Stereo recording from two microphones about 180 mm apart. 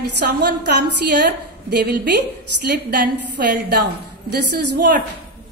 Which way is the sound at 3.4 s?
70° right (ahead or behind).